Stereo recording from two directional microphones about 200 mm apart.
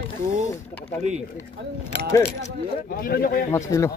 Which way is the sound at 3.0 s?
45° left (ahead or behind).